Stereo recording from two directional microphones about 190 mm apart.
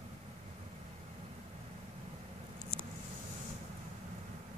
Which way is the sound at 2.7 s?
30° left (ahead or behind).